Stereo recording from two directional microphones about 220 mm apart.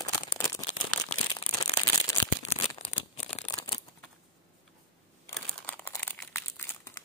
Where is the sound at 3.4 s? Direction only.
25° left (ahead or behind).